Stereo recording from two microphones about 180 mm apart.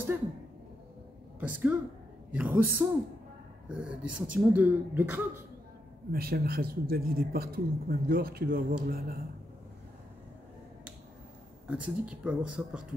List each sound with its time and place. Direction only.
1.4 s speech: 10° right (ahead or behind)
6.1 s a woman's voice: 55° right (ahead or behind)
11.6 s speech: 5° right (ahead or behind)